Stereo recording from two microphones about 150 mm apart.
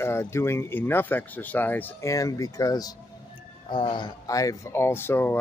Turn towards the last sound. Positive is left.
turn(degrees=15)  # may be behind; listen again after turning